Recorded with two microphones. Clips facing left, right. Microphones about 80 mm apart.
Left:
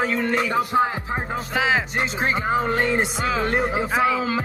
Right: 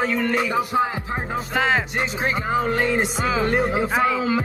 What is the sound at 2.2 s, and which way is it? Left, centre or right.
Speech, left.